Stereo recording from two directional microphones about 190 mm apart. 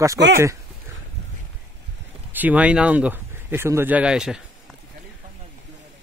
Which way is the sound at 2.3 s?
10° right (ahead or behind).